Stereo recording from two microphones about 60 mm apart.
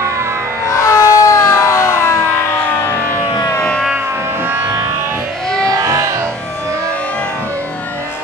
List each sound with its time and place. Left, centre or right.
0.7 s siren: left
5.7 s music: right